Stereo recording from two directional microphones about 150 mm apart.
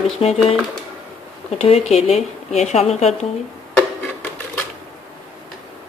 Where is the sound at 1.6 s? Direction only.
40° left (ahead or behind).